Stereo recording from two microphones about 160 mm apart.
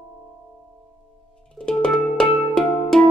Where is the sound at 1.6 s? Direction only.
5° left (ahead or behind).